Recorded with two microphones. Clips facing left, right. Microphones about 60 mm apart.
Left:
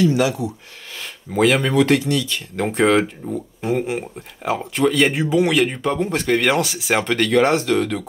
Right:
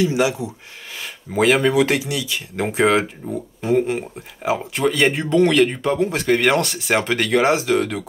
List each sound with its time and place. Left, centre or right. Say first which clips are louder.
0.0 s speech: left 1 dB; centre
1.0 s speech: even; centre